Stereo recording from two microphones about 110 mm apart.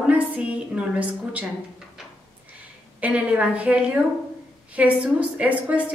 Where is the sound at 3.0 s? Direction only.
10° right (ahead or behind).